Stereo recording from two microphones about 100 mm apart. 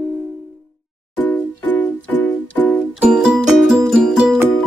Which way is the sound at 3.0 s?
5° right (ahead or behind).